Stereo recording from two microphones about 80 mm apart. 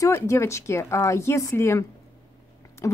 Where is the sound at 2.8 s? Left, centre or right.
Left.